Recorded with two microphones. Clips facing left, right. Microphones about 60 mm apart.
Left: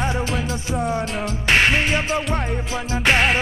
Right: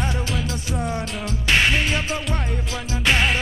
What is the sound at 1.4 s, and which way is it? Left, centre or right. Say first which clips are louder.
Music: left 2 dB; left.